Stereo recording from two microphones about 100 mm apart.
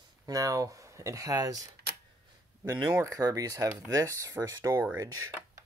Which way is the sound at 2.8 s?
35° right (ahead or behind).